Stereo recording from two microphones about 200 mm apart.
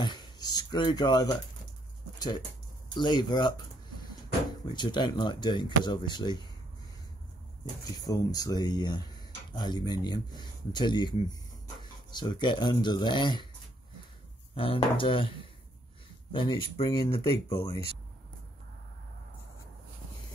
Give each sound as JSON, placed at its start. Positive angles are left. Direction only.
{"t": 0.0, "sound": "a sound", "side_deg": 20}
{"t": 2.9, "sound": "speech", "side_deg": 20}
{"t": 8.0, "sound": "speech", "side_deg": 20}
{"t": 14.5, "sound": "speech", "side_deg": 25}